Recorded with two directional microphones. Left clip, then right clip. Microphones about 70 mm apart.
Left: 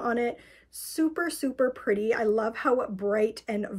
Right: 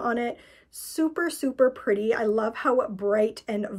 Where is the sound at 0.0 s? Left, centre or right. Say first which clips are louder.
Right 1 dB; right.